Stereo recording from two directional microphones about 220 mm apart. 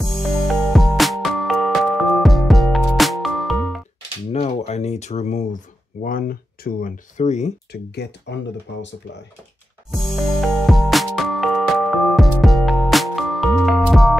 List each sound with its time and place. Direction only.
0.0 s music: centre (ahead or behind)
4.3 s speech: 30° left (ahead or behind)
7.7 s speech: 50° left (ahead or behind)
9.8 s music: centre (ahead or behind)